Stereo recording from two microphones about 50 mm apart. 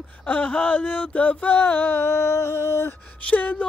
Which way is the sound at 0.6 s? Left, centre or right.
Left.